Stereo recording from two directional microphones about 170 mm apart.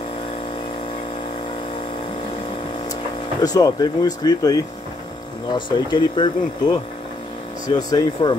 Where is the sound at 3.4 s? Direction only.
20° left (ahead or behind).